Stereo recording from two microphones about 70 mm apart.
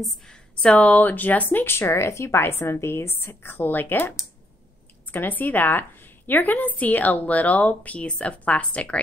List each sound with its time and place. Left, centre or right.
0.3 s speech: centre
5.1 s a woman's voice: left